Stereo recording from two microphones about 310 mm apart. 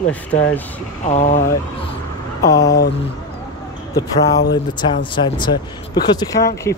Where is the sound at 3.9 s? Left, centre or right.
Centre.